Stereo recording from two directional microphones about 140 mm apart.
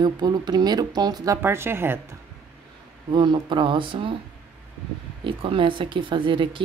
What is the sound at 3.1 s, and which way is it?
Speech, 35° right (ahead or behind).